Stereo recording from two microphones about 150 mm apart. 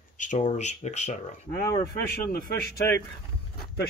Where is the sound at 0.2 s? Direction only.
55° left (ahead or behind).